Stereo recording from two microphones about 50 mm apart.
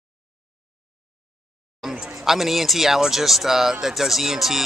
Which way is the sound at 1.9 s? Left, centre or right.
Centre.